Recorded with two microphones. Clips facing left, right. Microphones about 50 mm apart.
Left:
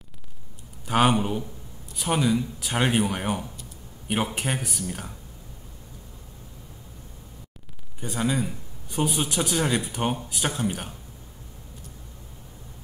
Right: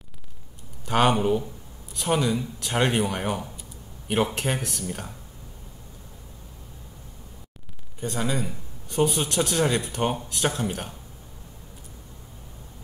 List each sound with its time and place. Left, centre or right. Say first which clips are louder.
0.8 s speech: right 1 dB; centre
8.0 s a man's voice: left 1 dB; centre